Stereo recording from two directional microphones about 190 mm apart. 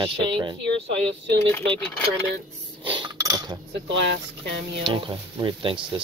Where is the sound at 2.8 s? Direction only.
25° right (ahead or behind).